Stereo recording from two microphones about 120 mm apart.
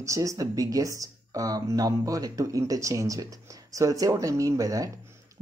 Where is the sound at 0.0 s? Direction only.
25° right (ahead or behind).